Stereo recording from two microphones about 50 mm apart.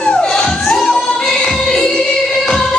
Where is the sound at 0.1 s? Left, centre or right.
Centre.